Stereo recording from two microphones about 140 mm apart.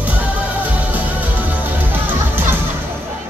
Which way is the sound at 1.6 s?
15° right (ahead or behind).